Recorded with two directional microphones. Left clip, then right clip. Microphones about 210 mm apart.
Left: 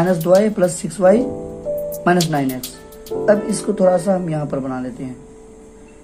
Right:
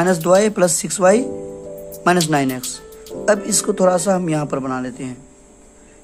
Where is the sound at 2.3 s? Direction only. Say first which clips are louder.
Right 2 dB; 20° right (ahead or behind).